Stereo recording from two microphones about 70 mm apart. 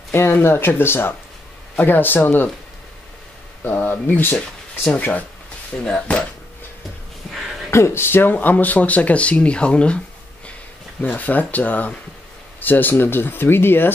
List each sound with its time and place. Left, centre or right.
0.1 s speech: left
3.6 s speech: left
7.2 s music: centre
7.7 s speech: left; by 9.9 s centre
11.0 s speech: left